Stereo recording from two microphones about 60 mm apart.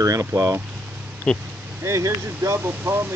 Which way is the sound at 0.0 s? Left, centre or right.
Right.